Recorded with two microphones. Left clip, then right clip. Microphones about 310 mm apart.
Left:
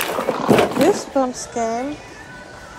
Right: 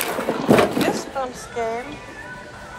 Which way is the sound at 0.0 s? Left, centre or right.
Centre.